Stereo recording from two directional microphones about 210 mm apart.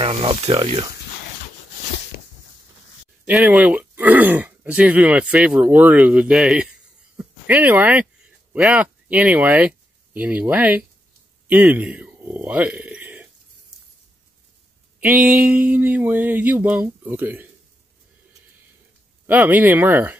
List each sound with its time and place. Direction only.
0.0 s speech: 25° right (ahead or behind)
3.3 s speech: 5° right (ahead or behind)
15.0 s speech: 5° right (ahead or behind)
19.2 s speech: 10° right (ahead or behind)